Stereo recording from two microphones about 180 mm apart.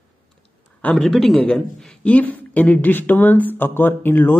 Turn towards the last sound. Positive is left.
turn(degrees=10)  # may be behind; listen again after turning